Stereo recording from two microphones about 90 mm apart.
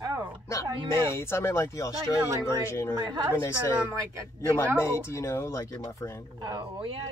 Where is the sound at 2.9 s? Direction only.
45° right (ahead or behind).